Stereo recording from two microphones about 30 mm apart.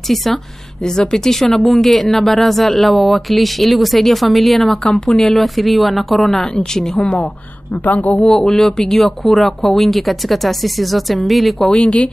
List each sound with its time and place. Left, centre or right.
0.1 s speech: centre
1.1 s speech: centre
6.4 s speech: left
7.0 s a woman's voice: left
7.8 s speech: left
8.3 s speech: centre
8.9 s speech: centre
11.7 s a woman's voice: left